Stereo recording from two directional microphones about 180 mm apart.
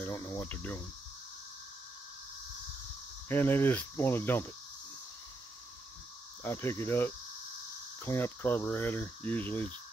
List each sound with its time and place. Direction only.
0.0 s speech: 15° left (ahead or behind)
3.3 s speech: 10° left (ahead or behind)
6.4 s speech: 15° left (ahead or behind)